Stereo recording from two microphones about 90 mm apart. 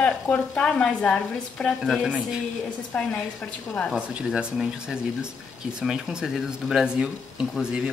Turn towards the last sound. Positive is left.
turn(degrees=-10)  # may be behind; listen again after turning